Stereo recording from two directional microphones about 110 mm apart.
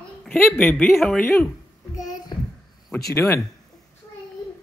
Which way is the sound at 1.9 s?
35° left (ahead or behind).